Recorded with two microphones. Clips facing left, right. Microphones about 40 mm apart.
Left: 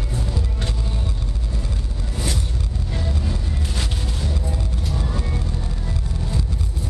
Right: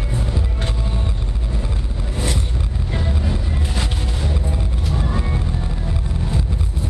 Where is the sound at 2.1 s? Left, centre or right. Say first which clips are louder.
Right 3 dB; right.